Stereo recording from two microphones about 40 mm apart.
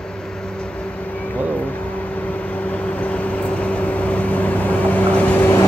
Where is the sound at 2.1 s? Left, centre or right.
Left.